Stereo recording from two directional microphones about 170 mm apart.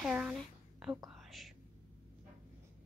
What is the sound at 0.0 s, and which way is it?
Whispering, 5° right (ahead or behind).